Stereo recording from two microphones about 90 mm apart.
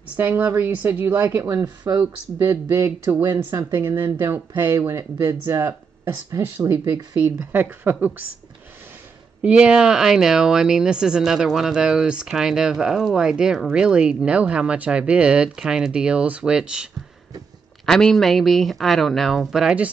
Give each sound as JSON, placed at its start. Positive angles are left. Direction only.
{"t": 0.1, "sound": "a woman's voice", "side_deg": -20}
{"t": 6.4, "sound": "a woman's voice", "side_deg": -20}
{"t": 9.4, "sound": "speech", "side_deg": -15}
{"t": 17.8, "sound": "speech", "side_deg": 5}